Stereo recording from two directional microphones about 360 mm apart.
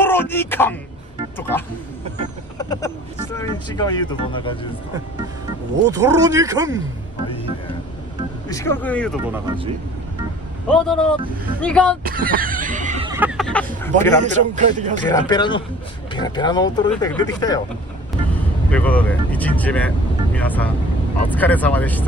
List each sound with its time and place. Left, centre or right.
0.0 s speech: centre
3.3 s speech: centre
5.9 s speech: centre
8.5 s speech: centre
10.7 s speech: centre
12.0 s a sound: right
13.1 s a sound: centre
14.2 s speech: centre
15.1 s speech: centre
18.7 s speech: centre